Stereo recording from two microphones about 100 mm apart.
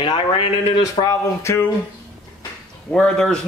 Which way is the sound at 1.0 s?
35° left (ahead or behind).